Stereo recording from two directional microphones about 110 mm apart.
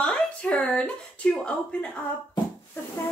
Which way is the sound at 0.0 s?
10° left (ahead or behind).